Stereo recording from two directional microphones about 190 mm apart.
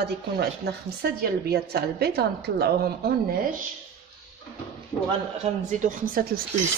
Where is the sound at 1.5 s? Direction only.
55° right (ahead or behind).